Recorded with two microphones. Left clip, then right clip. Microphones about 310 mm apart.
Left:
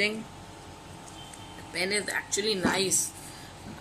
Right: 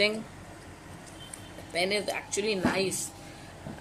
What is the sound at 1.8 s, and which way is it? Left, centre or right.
Speech, centre.